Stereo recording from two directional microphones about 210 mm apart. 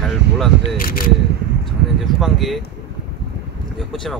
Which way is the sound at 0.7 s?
45° left (ahead or behind).